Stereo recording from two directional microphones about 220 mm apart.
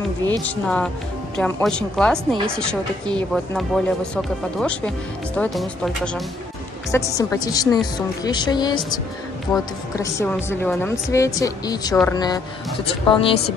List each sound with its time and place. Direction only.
0.4 s speech: 5° left (ahead or behind)
6.9 s a woman's voice: 15° left (ahead or behind)
9.5 s speech: centre (ahead or behind)
9.9 s a woman's voice: 15° left (ahead or behind)